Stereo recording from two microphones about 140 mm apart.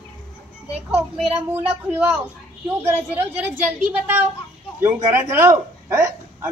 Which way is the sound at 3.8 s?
10° right (ahead or behind).